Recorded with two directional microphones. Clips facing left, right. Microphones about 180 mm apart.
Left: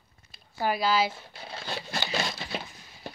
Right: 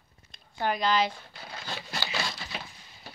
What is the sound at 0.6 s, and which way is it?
Speech, 5° left (ahead or behind).